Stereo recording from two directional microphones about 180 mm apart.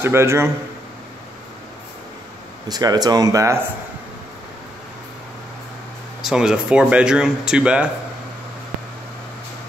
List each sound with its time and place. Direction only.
0.0 s a man's voice: 15° right (ahead or behind)
2.7 s speech: 20° right (ahead or behind)
6.2 s speech: 5° right (ahead or behind)